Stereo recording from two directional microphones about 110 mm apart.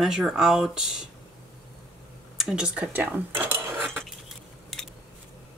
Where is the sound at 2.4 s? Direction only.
5° right (ahead or behind).